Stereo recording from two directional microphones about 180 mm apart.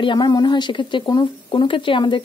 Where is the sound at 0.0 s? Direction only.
25° left (ahead or behind).